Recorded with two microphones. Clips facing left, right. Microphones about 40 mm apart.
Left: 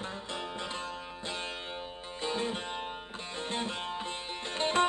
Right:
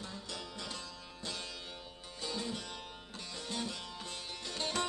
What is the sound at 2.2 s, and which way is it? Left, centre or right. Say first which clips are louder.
Music: left 6 dB; left.